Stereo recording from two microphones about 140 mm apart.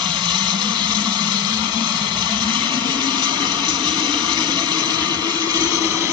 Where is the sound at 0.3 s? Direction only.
35° right (ahead or behind).